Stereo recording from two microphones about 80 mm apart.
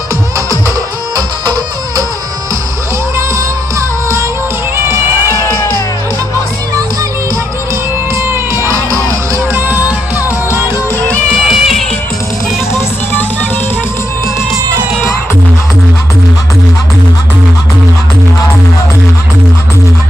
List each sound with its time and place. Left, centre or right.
1.1 s music: right
4.8 s music: right
5.4 s music: left
8.2 s music: right
9.6 s music: right
11.4 s music: centre
12.7 s music: left